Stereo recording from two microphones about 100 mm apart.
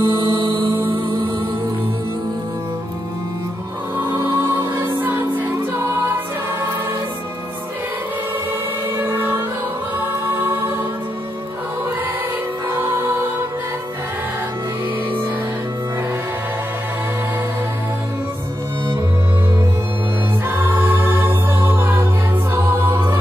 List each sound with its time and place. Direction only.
0.0 s music: 50° right (ahead or behind)
4.3 s music: 45° right (ahead or behind)
5.0 s music: 25° right (ahead or behind)
8.9 s music: 20° right (ahead or behind)
12.6 s music: 25° right (ahead or behind)
20.4 s music: 20° right (ahead or behind)